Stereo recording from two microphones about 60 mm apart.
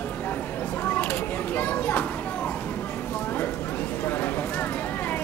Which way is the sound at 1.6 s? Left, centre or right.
Left.